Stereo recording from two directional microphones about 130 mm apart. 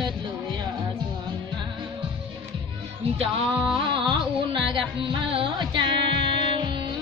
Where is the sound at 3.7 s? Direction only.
40° right (ahead or behind).